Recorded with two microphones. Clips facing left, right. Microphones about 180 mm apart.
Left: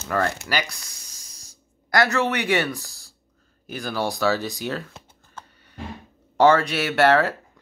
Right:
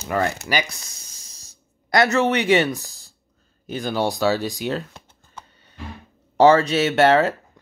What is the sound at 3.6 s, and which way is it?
Speech, 20° right (ahead or behind).